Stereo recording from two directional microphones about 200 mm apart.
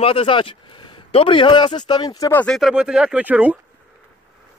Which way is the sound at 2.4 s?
Centre (ahead or behind).